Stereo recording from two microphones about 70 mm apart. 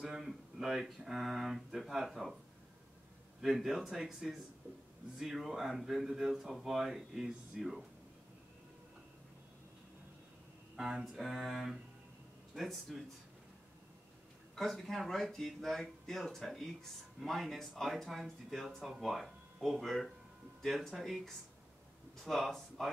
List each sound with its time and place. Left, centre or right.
0.0 s speech: centre
3.3 s speech: centre
10.8 s speech: centre
14.5 s speech: centre
22.2 s speech: centre